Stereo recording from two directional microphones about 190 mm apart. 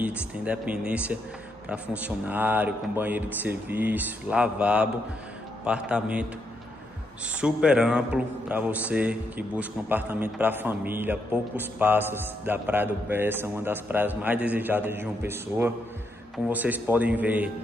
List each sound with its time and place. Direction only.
0.5 s a man's voice: 5° right (ahead or behind)
7.3 s a man's voice: 5° right (ahead or behind)